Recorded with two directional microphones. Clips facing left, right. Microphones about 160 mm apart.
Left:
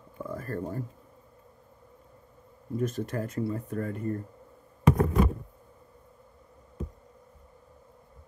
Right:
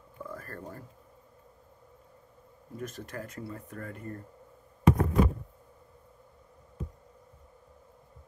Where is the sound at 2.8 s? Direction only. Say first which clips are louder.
Left 9 dB; 25° left (ahead or behind).